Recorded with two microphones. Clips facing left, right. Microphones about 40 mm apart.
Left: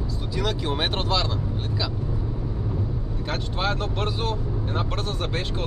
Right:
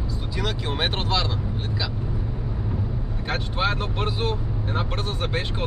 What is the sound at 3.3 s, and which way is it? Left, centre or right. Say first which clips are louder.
Speech: right 2 dB; centre.